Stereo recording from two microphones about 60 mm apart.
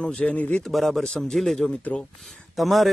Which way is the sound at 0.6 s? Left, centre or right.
Centre.